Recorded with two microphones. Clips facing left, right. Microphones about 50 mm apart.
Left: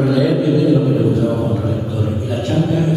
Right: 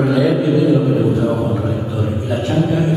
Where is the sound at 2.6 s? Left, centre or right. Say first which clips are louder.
Even; centre.